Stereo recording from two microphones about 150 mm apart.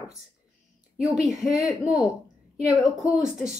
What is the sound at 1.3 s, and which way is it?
Speech, 5° right (ahead or behind).